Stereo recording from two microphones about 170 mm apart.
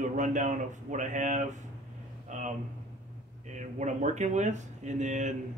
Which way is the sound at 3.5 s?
45° right (ahead or behind).